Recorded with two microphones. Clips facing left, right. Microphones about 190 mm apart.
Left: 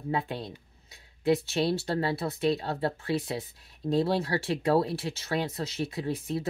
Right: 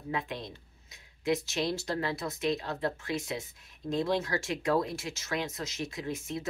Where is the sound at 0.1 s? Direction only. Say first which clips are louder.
Left 4 dB; 30° left (ahead or behind).